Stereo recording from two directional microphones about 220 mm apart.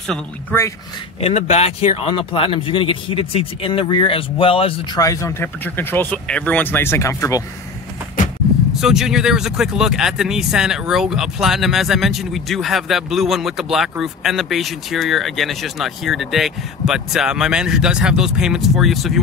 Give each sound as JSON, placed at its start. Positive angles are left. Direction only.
{"t": 0.1, "sound": "speech", "side_deg": 10}
{"t": 1.2, "sound": "speech", "side_deg": 30}
{"t": 8.8, "sound": "speech", "side_deg": 0}